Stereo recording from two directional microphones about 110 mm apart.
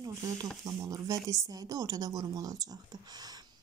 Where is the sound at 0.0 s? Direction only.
35° right (ahead or behind).